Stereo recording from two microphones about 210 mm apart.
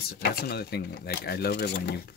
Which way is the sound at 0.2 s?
50° left (ahead or behind).